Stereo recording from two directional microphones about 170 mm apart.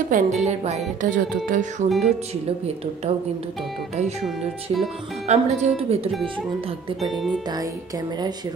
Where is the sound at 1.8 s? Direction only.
Centre (ahead or behind).